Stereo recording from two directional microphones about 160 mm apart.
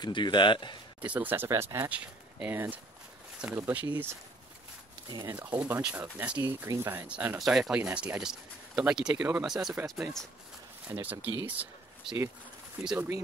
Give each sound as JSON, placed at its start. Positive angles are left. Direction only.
{"t": 0.0, "sound": "speech", "side_deg": 30}
{"t": 1.0, "sound": "speech", "side_deg": -10}
{"t": 5.3, "sound": "speech", "side_deg": -10}
{"t": 10.9, "sound": "speech", "side_deg": -10}